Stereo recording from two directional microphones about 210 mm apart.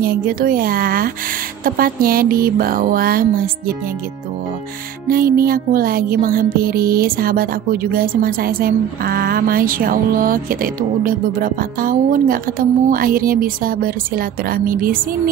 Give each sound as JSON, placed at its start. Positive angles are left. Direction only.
{"t": 0.0, "sound": "music", "side_deg": -45}
{"t": 5.0, "sound": "music", "side_deg": -45}